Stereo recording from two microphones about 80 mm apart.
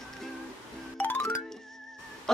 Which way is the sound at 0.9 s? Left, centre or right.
Left.